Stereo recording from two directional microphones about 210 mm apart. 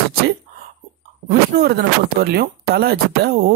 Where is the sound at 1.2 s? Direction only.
50° right (ahead or behind).